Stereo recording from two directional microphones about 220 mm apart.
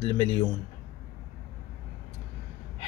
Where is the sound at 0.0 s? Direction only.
25° left (ahead or behind).